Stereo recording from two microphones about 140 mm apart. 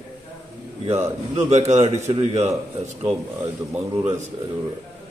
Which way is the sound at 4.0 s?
50° right (ahead or behind).